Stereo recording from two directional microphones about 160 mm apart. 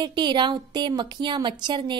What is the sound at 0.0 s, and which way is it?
A woman's voice, 30° right (ahead or behind).